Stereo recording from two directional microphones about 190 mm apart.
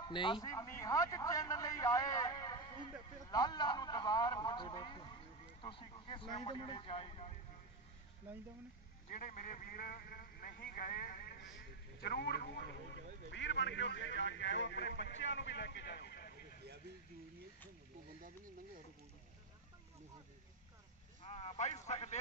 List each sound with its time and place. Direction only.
0.1 s a man's voice: 25° left (ahead or behind)
9.2 s a man's voice: 45° left (ahead or behind)
13.3 s a man's voice: 70° left (ahead or behind)
21.2 s a man's voice: 30° left (ahead or behind)